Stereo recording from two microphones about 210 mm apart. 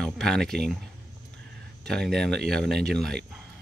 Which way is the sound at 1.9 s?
Centre (ahead or behind).